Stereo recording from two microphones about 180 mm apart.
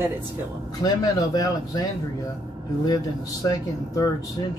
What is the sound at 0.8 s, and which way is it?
Speech, 20° left (ahead or behind).